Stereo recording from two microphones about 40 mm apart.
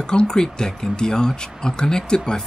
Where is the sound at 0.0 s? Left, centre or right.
Left.